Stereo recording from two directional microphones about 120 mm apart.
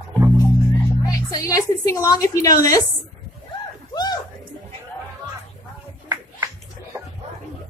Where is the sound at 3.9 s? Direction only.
35° left (ahead or behind).